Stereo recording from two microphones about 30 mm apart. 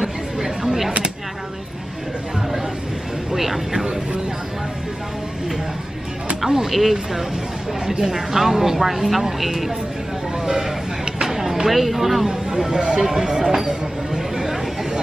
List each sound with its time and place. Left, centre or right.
3.3 s speech: centre
6.4 s speech: centre
7.8 s speech: right; by 9.7 s centre
10.4 s a sound: right
11.2 s speech: centre
12.3 s speech: right
13.7 s a sound: centre